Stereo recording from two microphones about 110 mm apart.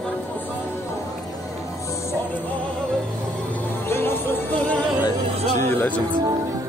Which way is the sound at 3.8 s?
20° left (ahead or behind).